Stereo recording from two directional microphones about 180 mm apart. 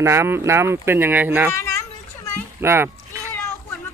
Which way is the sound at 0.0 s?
15° right (ahead or behind).